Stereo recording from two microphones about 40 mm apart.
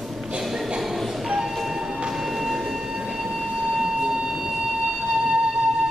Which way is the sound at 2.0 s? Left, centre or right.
Centre.